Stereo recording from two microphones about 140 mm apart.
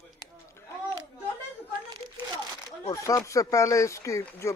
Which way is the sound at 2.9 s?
20° left (ahead or behind).